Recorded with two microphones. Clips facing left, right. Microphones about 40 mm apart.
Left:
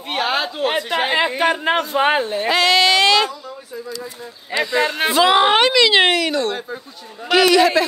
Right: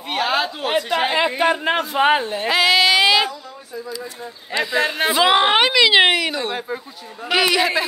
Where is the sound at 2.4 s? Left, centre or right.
Centre.